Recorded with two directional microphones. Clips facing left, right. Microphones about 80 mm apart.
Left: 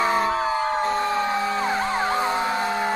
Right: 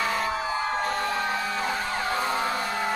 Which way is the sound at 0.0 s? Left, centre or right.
Left.